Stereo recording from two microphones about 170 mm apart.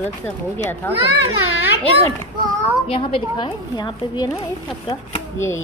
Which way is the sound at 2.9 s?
30° left (ahead or behind).